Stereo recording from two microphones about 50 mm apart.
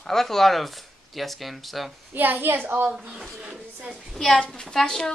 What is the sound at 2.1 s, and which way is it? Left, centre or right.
Speech, right.